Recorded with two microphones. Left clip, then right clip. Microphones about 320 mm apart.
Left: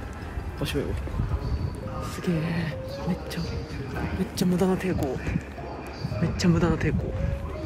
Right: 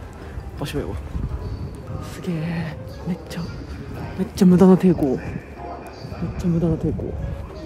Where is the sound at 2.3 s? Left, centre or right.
Centre.